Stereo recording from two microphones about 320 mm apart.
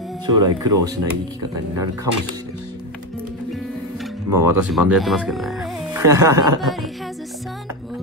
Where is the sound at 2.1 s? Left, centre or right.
Right.